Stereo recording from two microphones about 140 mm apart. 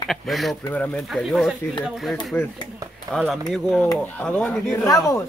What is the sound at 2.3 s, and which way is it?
Speech, 15° left (ahead or behind).